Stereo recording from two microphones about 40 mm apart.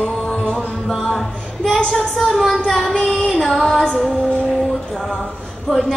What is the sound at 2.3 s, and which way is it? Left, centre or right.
Speech, centre.